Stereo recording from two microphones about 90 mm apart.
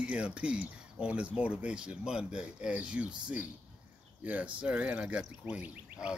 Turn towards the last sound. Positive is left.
turn(degrees=-15)  # may be behind; listen again after turning